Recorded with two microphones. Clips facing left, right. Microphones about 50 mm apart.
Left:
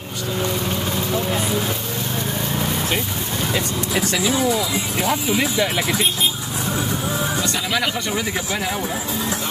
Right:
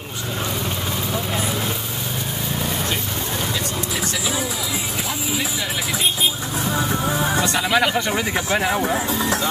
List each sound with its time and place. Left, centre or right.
3.9 s speech: centre
5.0 s speech: left
7.1 s speech: right